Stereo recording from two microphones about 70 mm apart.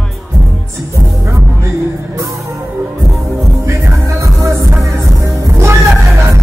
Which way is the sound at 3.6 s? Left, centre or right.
Right.